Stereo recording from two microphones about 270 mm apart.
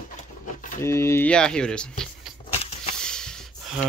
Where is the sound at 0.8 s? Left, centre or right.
Centre.